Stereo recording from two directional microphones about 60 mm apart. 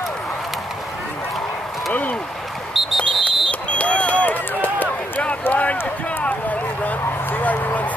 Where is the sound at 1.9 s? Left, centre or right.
Left.